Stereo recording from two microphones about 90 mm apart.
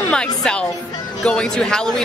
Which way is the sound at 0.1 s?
10° left (ahead or behind).